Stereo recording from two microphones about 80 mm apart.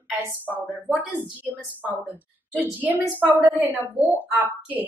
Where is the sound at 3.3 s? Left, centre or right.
Right.